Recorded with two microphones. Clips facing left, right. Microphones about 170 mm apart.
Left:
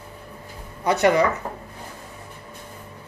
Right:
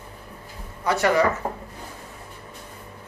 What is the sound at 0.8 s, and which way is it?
Speech, 20° left (ahead or behind).